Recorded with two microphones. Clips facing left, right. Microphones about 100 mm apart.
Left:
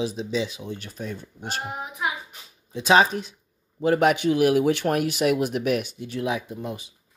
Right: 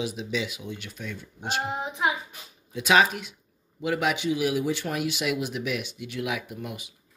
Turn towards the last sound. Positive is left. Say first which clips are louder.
# left 4 dB
turn(degrees=30)  # may be behind; listen again after turning